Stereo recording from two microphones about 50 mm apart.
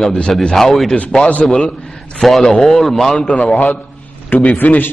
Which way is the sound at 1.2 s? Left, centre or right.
Left.